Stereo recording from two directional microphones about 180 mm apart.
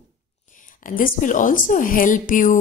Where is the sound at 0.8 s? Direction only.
50° left (ahead or behind).